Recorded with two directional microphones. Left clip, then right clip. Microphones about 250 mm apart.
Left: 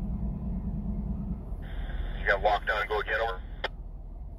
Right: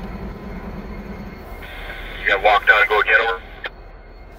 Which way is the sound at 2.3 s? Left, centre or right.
Left.